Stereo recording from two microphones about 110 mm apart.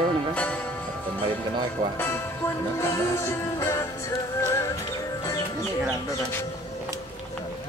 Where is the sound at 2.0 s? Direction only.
20° left (ahead or behind).